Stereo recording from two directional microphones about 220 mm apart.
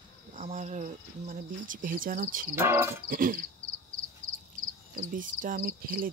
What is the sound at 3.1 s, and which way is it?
Cricket, 40° right (ahead or behind).